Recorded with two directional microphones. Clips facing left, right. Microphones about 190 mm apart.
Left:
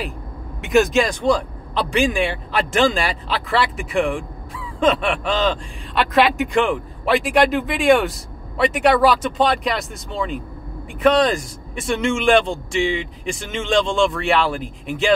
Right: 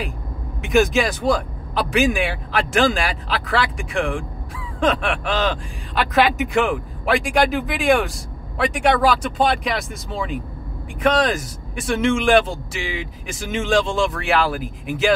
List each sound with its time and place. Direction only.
0.6 s speech: centre (ahead or behind)